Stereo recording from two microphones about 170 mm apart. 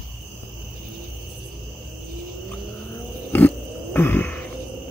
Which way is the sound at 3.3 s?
10° left (ahead or behind).